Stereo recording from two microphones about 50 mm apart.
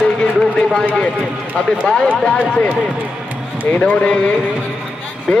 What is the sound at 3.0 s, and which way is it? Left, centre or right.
Music, right.